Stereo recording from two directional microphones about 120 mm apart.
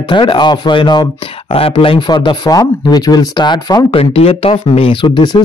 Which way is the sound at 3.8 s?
55° left (ahead or behind).